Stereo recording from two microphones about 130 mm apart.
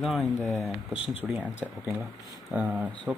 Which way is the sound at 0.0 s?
Centre (ahead or behind).